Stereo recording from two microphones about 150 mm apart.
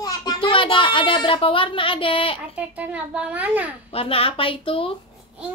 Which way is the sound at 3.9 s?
40° left (ahead or behind).